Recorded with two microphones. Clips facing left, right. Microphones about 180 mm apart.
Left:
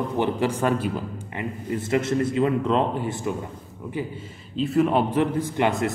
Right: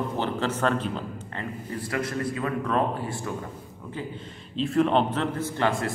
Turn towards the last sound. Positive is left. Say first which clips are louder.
# left 3 dB
turn(degrees=20)  # may be behind; listen again after turning